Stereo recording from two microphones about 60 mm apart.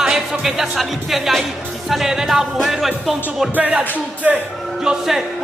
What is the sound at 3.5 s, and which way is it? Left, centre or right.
Speech, right.